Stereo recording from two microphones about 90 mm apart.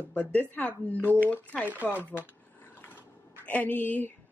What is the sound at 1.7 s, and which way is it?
Speech, 20° right (ahead or behind).